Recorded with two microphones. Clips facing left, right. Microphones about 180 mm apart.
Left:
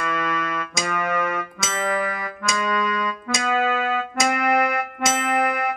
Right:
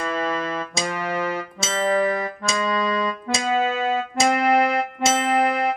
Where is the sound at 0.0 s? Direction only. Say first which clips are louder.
Right 1 dB; 30° right (ahead or behind).